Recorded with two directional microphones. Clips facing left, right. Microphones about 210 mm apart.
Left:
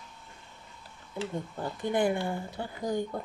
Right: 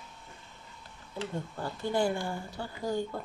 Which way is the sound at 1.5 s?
20° left (ahead or behind).